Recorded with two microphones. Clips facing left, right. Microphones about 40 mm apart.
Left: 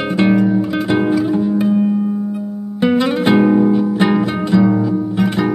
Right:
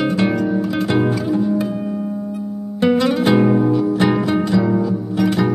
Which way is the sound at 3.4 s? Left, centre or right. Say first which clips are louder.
Left 3 dB; centre.